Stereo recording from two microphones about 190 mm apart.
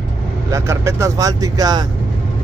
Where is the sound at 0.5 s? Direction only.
15° right (ahead or behind).